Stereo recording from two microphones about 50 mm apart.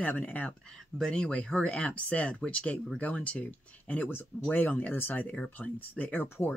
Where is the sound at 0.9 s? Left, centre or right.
Centre.